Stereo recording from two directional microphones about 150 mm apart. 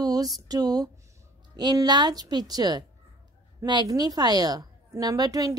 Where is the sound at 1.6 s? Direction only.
25° right (ahead or behind).